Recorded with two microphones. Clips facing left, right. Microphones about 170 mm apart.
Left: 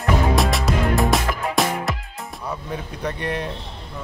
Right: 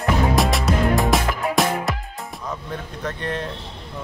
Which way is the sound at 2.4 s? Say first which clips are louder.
Left 2 dB; 10° left (ahead or behind).